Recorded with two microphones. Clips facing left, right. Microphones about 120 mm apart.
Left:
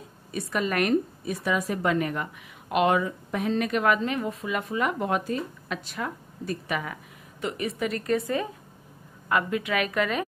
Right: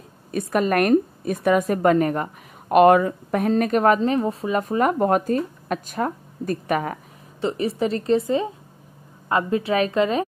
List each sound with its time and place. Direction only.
0.3 s speech: 50° right (ahead or behind)
7.4 s a woman's voice: 30° right (ahead or behind)